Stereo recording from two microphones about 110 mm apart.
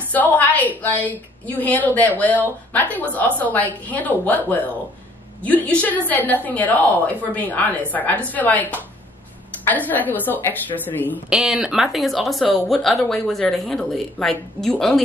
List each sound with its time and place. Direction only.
0.1 s a woman's voice: 15° left (ahead or behind)
11.2 s speech: 5° right (ahead or behind)